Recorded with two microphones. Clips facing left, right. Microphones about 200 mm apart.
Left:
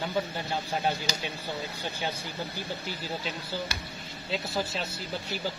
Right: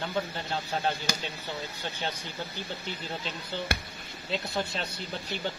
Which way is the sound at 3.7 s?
55° right (ahead or behind).